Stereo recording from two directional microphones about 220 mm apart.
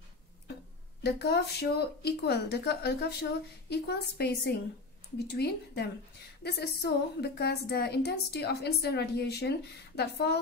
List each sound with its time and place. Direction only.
1.0 s a woman's voice: 50° left (ahead or behind)